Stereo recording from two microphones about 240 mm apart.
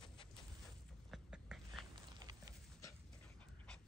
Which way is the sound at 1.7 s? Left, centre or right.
Centre.